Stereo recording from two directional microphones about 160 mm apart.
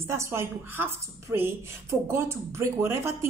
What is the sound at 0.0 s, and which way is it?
A woman's voice, 15° right (ahead or behind).